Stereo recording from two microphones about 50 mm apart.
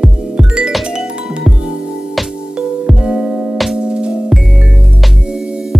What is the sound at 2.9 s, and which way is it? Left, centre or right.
Music, right.